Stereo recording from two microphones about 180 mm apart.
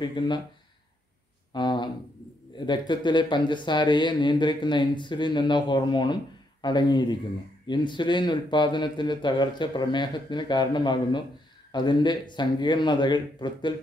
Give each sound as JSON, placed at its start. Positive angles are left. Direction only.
{"t": 0.0, "sound": "a man's voice", "side_deg": 25}
{"t": 1.5, "sound": "a man's voice", "side_deg": 25}